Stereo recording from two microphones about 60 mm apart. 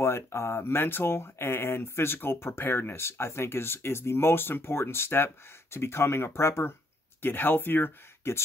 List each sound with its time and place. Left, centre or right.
0.0 s speech: left